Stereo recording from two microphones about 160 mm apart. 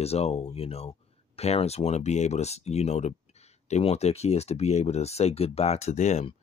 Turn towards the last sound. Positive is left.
turn(degrees=45)  # may be behind; listen again after turning